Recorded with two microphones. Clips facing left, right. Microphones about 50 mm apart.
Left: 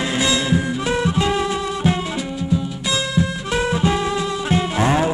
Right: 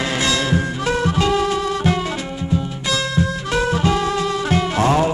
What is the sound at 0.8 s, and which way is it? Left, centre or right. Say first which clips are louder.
Music: right 1 dB; left.